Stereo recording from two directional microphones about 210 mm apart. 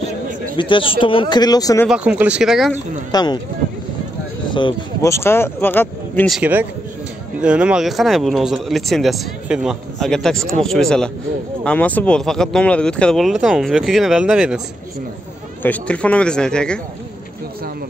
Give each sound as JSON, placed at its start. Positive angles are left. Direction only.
{"t": 0.6, "sound": "speech", "side_deg": 25}
{"t": 1.9, "sound": "speech", "side_deg": -5}
{"t": 3.1, "sound": "speech", "side_deg": 20}
{"t": 4.5, "sound": "speech", "side_deg": 25}
{"t": 15.6, "sound": "speech", "side_deg": 5}